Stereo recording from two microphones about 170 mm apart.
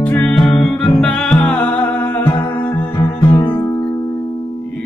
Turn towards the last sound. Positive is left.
turn(degrees=20)  # may be behind; listen again after turning